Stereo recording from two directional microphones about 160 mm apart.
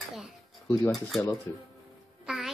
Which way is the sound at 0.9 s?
Centre (ahead or behind).